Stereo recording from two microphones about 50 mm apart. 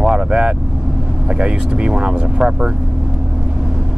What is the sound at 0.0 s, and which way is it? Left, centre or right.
Vehicle, centre.